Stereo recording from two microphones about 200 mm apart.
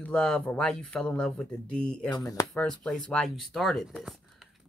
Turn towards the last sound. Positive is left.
turn(degrees=0)  # may be behind; listen again after turning